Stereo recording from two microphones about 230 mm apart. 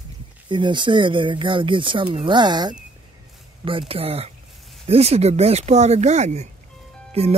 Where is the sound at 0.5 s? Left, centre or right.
Centre.